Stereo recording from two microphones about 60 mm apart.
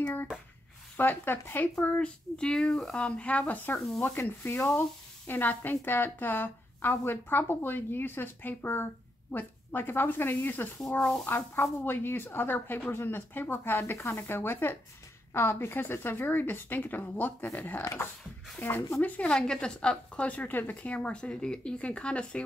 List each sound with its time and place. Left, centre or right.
0.0 s hands: left
0.9 s speech: left
2.3 s a woman's voice: centre; by 3.8 s left
4.2 s speech: left
10.8 s speech: centre
11.2 s speech: left
18.9 s a woman's voice: left
19.2 s a woman's voice: centre